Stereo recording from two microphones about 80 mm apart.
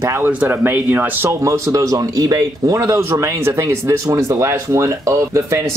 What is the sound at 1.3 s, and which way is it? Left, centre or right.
Speech, right.